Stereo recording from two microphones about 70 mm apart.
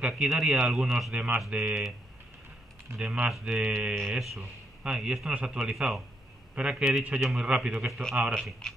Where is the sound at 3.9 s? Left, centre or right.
Centre.